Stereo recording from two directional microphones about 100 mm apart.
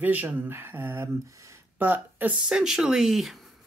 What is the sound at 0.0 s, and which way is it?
Speech, 15° right (ahead or behind).